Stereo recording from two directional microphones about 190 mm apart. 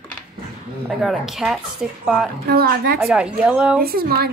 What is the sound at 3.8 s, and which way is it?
Speech, 50° right (ahead or behind).